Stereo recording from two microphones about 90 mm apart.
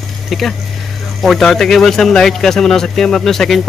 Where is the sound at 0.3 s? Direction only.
Centre (ahead or behind).